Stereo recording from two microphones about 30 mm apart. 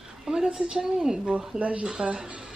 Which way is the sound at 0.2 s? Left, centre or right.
Right.